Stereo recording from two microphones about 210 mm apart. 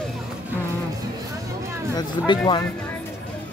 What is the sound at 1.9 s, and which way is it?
Speech, 20° left (ahead or behind).